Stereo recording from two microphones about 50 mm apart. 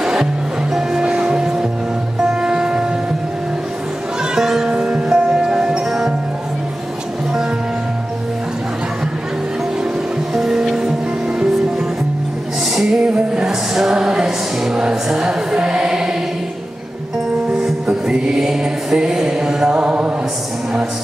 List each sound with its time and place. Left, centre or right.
0.0 s music: centre
4.4 s music: centre
4.7 s music: centre
10.3 s music: centre
12.7 s music: centre
17.8 s music: centre